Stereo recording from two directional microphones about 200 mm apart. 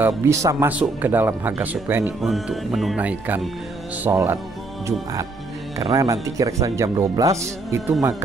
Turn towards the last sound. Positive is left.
turn(degrees=-15)  # may be behind; listen again after turning